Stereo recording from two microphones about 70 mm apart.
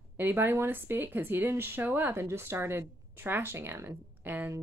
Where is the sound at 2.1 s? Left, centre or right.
Right.